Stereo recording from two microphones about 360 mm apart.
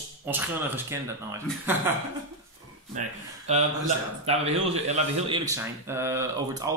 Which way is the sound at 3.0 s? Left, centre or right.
Centre.